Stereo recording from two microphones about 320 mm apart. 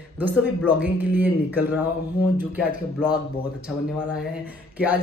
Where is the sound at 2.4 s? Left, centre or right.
Centre.